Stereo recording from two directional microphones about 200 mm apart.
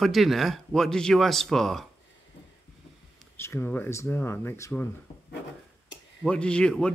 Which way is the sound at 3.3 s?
10° left (ahead or behind).